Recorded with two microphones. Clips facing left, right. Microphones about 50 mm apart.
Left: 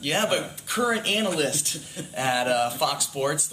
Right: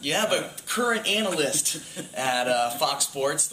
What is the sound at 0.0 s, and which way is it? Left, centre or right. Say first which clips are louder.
Speech: even; centre.